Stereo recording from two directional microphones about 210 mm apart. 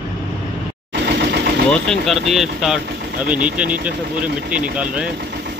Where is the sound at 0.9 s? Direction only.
55° right (ahead or behind).